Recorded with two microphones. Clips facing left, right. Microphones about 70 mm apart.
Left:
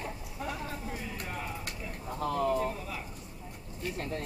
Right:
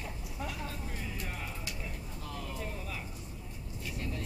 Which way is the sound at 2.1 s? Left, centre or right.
Left.